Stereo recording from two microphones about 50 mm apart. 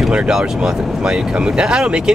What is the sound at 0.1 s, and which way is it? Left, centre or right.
Speech, centre.